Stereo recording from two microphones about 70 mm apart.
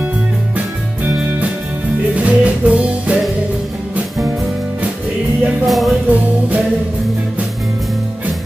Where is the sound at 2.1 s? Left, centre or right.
Centre.